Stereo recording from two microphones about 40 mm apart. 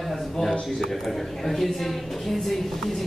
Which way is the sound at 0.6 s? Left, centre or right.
Centre.